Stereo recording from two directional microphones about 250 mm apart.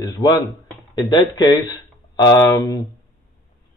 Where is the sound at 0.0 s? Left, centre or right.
Centre.